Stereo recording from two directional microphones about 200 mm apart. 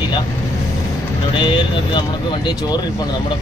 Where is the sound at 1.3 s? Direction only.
25° left (ahead or behind).